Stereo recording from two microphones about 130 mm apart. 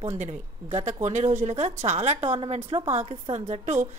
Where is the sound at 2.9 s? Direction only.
60° right (ahead or behind).